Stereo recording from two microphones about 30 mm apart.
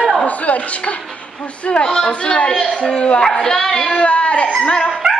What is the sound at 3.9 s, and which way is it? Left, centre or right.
Speech, left.